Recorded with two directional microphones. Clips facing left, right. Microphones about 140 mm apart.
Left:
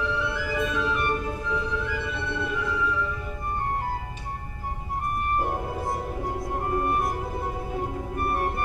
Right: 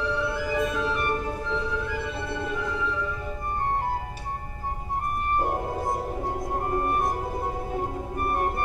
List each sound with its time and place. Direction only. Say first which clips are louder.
0.1 s music: right 2 dB; 35° right (ahead or behind)
0.8 s music: even; 30° right (ahead or behind)
5.4 s music: right 1 dB; 30° right (ahead or behind)